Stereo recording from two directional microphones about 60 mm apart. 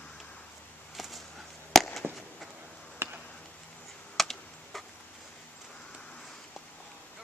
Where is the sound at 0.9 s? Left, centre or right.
Centre.